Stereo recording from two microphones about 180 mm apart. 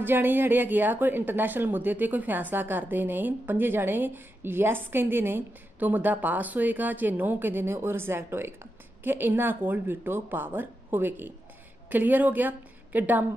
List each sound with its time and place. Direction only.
0.0 s speech: 10° right (ahead or behind)